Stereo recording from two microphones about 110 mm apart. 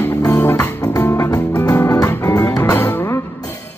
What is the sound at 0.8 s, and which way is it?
Music, 30° left (ahead or behind).